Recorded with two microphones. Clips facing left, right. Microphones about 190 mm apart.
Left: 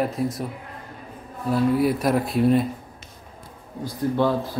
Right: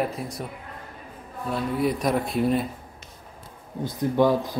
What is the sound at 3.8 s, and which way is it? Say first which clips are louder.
Speech: right 1 dB; 15° right (ahead or behind).